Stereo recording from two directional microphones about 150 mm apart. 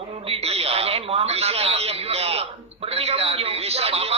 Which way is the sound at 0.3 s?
40° right (ahead or behind).